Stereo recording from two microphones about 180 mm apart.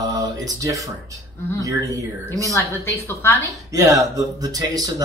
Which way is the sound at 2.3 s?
15° left (ahead or behind).